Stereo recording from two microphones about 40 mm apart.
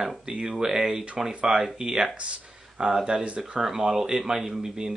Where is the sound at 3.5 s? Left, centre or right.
Centre.